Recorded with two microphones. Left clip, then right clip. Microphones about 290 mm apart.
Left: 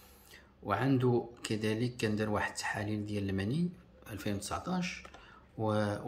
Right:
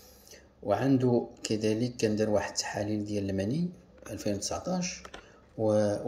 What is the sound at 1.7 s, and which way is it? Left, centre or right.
Speech, left.